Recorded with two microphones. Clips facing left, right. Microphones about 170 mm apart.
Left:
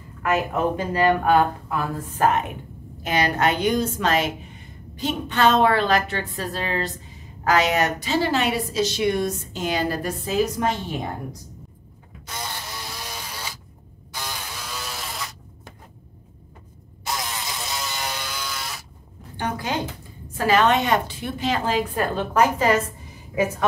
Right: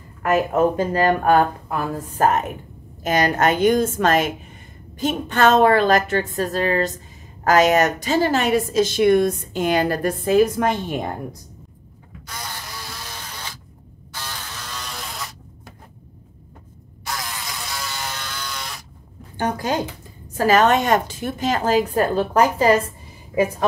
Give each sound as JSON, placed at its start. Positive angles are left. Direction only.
{"t": 0.2, "sound": "a woman's voice", "side_deg": -45}
{"t": 13.1, "sound": "a sound", "side_deg": 10}
{"t": 14.1, "sound": "buzz", "side_deg": 10}
{"t": 17.0, "sound": "electric shaver", "side_deg": 20}
{"t": 19.3, "sound": "a woman's voice", "side_deg": -45}